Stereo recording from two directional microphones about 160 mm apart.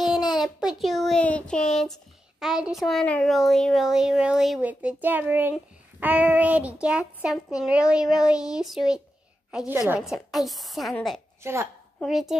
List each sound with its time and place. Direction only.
0.4 s a child's voice: centre (ahead or behind)
11.4 s a woman's voice: 15° right (ahead or behind)
12.0 s a child's voice: centre (ahead or behind)